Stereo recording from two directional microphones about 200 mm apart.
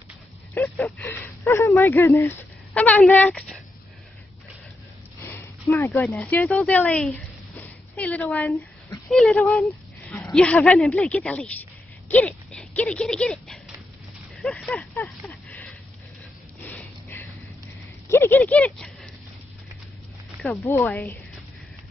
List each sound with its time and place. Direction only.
0.6 s speech: 10° left (ahead or behind)
5.2 s a sound: 10° left (ahead or behind)
6.0 s speech: 5° left (ahead or behind)
14.4 s a sound: 5° left (ahead or behind)
16.6 s gasp: 10° left (ahead or behind)
18.0 s speech: 10° left (ahead or behind)
20.4 s speech: 10° left (ahead or behind)